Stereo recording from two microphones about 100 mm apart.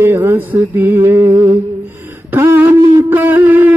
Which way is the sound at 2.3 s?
20° right (ahead or behind).